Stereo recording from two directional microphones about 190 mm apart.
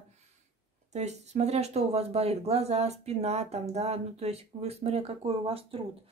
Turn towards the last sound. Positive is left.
turn(degrees=-30)  # may be behind; listen again after turning